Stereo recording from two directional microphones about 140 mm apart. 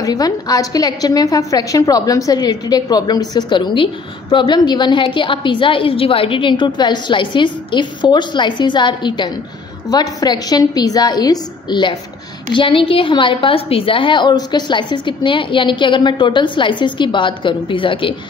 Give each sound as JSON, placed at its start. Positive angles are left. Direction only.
{"t": 0.0, "sound": "a woman's voice", "side_deg": 25}